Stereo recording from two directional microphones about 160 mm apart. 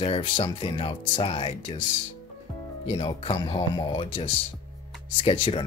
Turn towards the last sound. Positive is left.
turn(degrees=35)  # may be behind; listen again after turning